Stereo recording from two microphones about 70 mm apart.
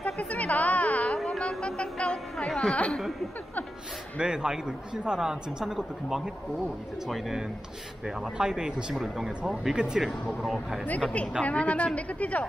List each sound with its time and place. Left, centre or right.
0.0 s a sound: centre
1.1 s music: centre
1.6 s music: centre
2.3 s a woman's voice: centre
4.2 s a man's voice: centre
11.4 s speech: left